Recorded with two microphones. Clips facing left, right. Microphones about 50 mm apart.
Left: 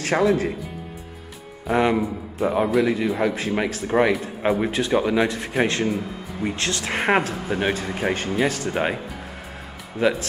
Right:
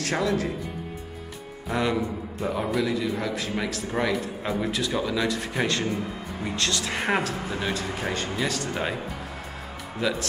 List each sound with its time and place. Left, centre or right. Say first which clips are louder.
0.0 s speech: left 6 dB; left
1.7 s speech: left 6 dB; left
2.8 s a man's voice: left 5 dB; left
7.7 s speech: left 4 dB; left
10.0 s a man's voice: left 6 dB; left